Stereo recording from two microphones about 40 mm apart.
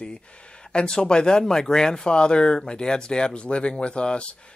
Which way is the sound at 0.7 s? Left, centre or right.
Left.